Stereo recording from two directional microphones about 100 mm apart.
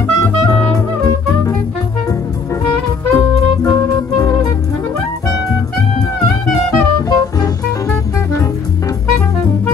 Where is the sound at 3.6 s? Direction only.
35° left (ahead or behind).